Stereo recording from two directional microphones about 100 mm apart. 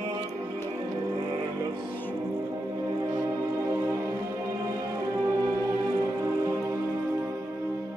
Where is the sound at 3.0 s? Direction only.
35° right (ahead or behind).